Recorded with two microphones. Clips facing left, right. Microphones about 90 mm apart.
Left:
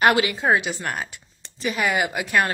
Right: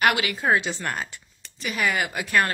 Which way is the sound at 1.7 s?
15° left (ahead or behind).